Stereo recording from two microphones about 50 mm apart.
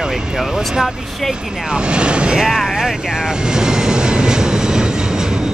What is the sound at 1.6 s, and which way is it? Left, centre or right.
Vehicle, centre.